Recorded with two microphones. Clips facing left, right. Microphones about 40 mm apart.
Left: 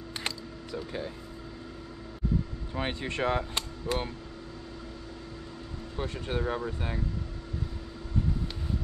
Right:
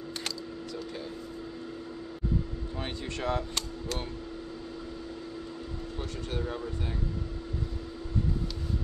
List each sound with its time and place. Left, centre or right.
2.8 s speech: left
5.9 s speech: left